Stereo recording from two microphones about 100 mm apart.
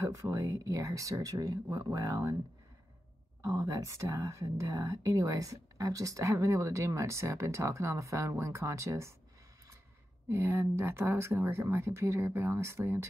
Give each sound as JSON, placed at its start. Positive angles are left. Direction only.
{"t": 0.1, "sound": "speech", "side_deg": -30}
{"t": 3.4, "sound": "speech", "side_deg": -35}
{"t": 10.3, "sound": "speech", "side_deg": -20}